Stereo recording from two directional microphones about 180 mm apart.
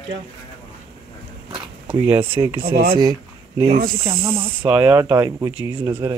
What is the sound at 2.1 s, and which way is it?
Speech, 10° right (ahead or behind).